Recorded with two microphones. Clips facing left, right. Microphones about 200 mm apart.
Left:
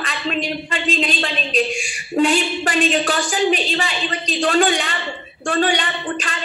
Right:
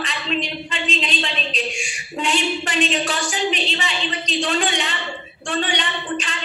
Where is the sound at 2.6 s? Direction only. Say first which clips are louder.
Left 3 dB; 50° left (ahead or behind).